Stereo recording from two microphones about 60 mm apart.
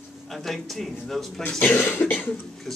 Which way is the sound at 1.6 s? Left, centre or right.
Left.